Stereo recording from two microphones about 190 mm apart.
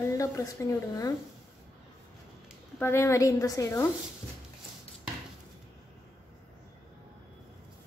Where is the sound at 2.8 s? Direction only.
15° left (ahead or behind).